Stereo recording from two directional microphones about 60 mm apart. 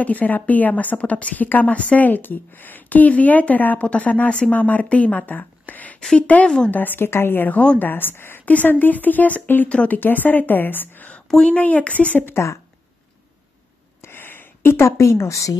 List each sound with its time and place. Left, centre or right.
0.0 s a woman's voice: left
6.7 s speech: left
7.5 s a woman's voice: centre
7.8 s speech: left
9.7 s a woman's voice: centre
9.9 s a woman's voice: left
12.3 s a woman's voice: left
14.0 s a sound: left